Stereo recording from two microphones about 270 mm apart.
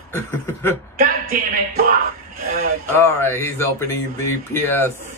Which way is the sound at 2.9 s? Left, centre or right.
Centre.